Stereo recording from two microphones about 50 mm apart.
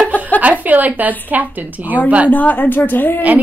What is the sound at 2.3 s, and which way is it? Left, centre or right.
Speech, left.